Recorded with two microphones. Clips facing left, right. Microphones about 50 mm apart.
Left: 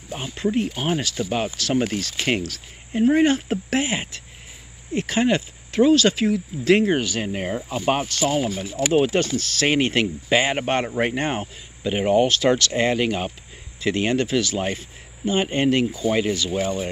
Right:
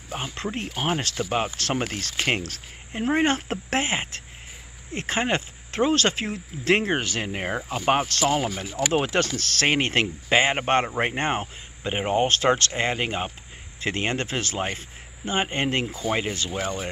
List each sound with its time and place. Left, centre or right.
0.3 s speech: right
3.3 s speech: right
7.3 s speech: right
8.1 s speech: right